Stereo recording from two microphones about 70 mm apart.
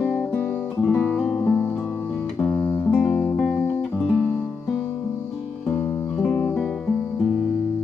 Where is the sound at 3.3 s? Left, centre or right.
Centre.